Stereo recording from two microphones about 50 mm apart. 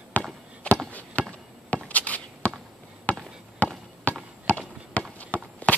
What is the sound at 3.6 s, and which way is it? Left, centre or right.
Basketball bounce, left.